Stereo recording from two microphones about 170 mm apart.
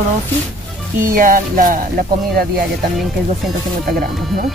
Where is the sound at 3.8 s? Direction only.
60° right (ahead or behind).